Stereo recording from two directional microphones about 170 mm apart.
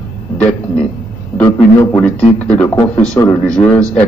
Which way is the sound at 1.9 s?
10° left (ahead or behind).